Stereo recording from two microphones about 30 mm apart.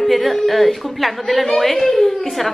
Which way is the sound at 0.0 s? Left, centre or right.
Centre.